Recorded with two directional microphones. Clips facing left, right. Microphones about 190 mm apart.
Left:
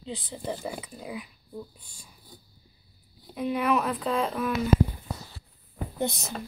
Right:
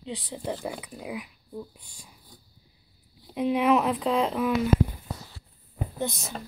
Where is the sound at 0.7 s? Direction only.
10° right (ahead or behind).